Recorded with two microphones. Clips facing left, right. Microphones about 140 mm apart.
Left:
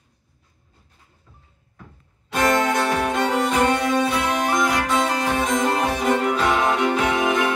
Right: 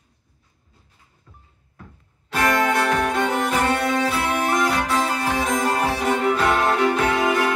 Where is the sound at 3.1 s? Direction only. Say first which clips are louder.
Left 1 dB; 5° right (ahead or behind).